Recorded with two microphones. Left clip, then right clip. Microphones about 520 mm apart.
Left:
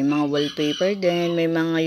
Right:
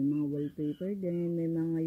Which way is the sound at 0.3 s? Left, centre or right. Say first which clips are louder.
Left 13 dB; left.